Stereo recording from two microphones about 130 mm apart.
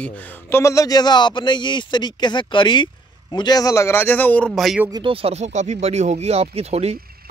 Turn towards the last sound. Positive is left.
turn(degrees=-55)  # may be behind; listen again after turning